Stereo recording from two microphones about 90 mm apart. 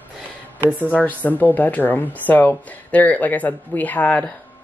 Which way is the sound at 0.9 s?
20° left (ahead or behind).